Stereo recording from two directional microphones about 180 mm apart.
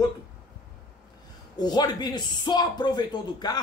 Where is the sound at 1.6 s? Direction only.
25° left (ahead or behind).